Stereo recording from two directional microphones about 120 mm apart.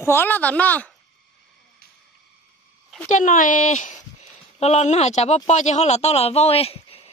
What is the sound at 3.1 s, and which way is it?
Speech, 90° left.